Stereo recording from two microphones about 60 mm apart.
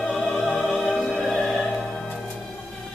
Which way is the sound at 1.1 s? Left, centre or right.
Centre.